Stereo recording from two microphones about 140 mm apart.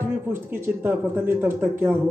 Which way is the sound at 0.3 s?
15° right (ahead or behind).